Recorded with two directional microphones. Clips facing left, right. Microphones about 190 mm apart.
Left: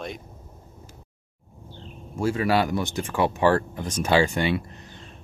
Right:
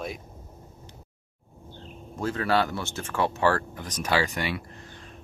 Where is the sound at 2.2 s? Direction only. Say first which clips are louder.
Left 3 dB; 10° left (ahead or behind); by 4.6 s 25° left (ahead or behind).